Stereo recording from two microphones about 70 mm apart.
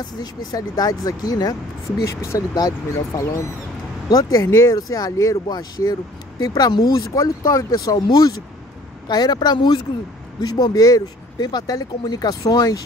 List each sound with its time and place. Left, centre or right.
0.2 s speech: left
2.0 s speech: left
4.7 s speech: left
5.5 s speech: left
9.0 s speech: left
10.4 s speech: left